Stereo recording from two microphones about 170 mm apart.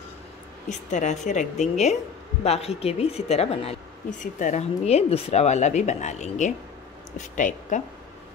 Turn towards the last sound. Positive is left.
turn(degrees=45)  # may be behind; listen again after turning